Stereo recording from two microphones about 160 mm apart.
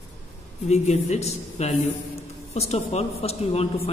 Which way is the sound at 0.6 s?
45° left (ahead or behind).